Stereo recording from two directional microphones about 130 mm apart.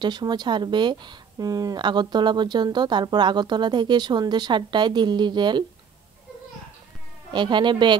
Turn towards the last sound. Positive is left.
turn(degrees=-35)  # may be behind; listen again after turning